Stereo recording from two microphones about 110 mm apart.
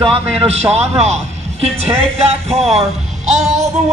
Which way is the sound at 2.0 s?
65° right (ahead or behind).